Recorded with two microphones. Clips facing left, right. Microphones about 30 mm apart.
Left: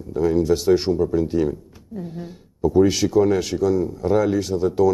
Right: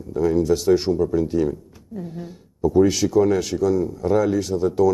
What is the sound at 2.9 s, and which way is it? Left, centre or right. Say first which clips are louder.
Speech: even; left.